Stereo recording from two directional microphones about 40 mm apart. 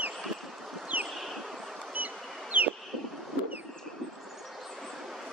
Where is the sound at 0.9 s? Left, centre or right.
Right.